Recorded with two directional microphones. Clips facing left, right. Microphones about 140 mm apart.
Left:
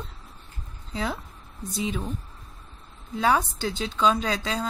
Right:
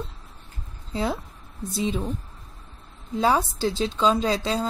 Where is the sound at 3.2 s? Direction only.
25° right (ahead or behind).